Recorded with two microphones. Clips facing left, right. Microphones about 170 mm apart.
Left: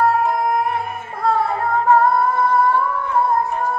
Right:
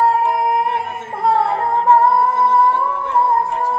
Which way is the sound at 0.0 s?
25° right (ahead or behind).